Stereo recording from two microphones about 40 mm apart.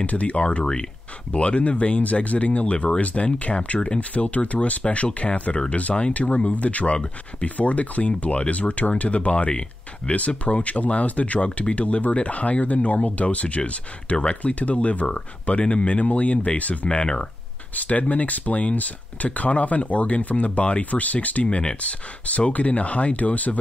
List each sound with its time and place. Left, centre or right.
0.0 s speech: left
21.5 s speech: left